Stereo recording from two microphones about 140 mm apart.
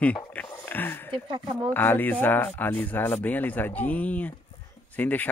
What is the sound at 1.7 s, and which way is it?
Speech, 15° left (ahead or behind).